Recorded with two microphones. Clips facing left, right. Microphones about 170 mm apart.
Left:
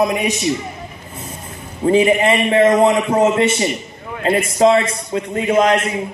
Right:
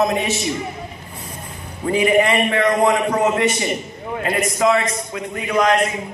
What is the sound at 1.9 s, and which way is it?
A man's voice, 25° left (ahead or behind).